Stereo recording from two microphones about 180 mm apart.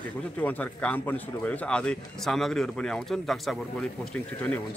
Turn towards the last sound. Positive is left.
turn(degrees=5)  # may be behind; listen again after turning